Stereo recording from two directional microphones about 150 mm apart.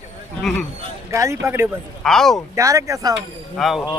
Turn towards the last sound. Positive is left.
turn(degrees=0)  # may be behind; listen again after turning